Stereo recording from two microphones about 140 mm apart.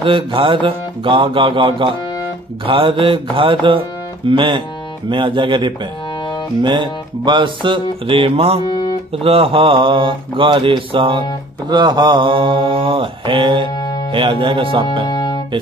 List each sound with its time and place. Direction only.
0.0 s speech: 40° right (ahead or behind)
13.7 s music: 30° left (ahead or behind)
14.1 s speech: 35° right (ahead or behind)
15.0 s music: 30° left (ahead or behind)